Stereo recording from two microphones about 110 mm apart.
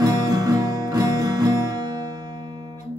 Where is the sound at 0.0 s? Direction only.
35° right (ahead or behind).